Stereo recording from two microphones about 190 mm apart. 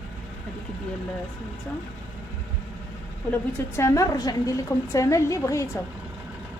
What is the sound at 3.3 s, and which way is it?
A woman's voice, 15° left (ahead or behind).